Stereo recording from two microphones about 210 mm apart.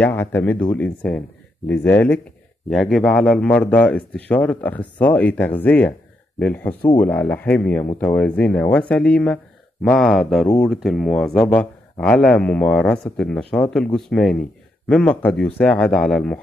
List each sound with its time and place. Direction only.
0.0 s speech: 10° left (ahead or behind)